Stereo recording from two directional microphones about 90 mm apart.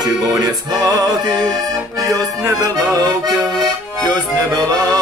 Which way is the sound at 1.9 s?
35° right (ahead or behind).